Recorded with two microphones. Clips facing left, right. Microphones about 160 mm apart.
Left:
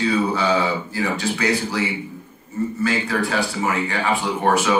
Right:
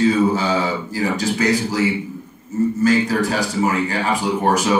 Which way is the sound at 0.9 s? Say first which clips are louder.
Right 3 dB; 40° right (ahead or behind).